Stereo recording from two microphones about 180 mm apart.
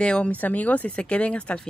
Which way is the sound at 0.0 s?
5° left (ahead or behind).